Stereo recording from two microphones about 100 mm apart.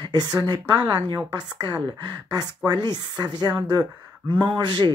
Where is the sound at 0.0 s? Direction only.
45° right (ahead or behind).